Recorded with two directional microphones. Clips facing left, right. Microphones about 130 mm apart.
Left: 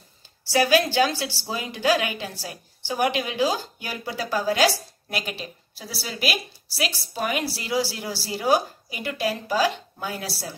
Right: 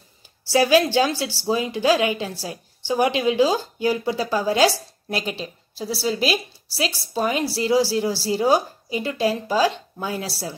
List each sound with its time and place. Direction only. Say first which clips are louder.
0.5 s a woman's voice: right 3 dB; 25° right (ahead or behind)